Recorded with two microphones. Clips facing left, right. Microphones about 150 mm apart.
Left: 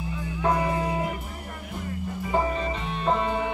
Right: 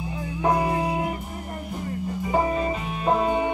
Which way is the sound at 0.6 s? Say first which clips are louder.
Right 2 dB; 30° right (ahead or behind).